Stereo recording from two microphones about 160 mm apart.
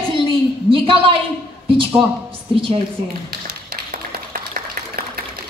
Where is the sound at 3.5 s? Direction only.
70° right (ahead or behind).